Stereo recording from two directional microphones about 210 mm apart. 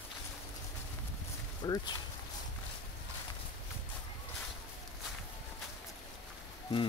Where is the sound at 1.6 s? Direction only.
20° left (ahead or behind).